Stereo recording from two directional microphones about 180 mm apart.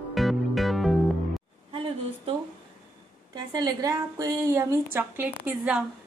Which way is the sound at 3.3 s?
20° right (ahead or behind).